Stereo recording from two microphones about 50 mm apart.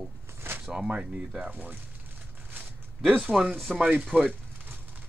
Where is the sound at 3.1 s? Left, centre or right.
Right.